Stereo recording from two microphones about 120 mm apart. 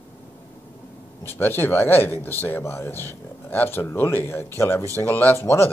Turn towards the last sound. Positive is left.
turn(degrees=20)  # may be behind; listen again after turning